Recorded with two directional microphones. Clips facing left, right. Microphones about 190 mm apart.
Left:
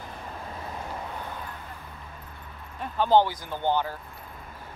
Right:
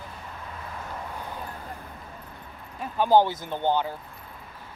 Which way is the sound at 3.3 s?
20° right (ahead or behind).